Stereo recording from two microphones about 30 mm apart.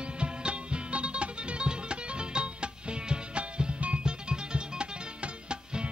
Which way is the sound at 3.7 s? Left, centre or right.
Right.